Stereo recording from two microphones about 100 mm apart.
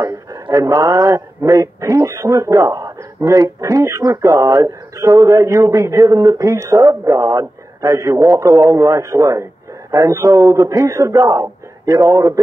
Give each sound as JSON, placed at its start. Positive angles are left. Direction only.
{"t": 0.0, "sound": "a man's voice", "side_deg": -35}